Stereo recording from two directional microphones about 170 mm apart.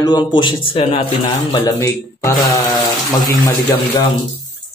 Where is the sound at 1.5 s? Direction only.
20° left (ahead or behind).